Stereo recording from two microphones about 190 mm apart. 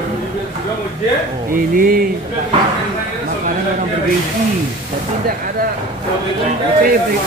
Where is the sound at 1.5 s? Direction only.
50° right (ahead or behind).